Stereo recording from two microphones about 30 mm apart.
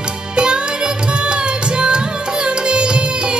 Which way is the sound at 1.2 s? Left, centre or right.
Right.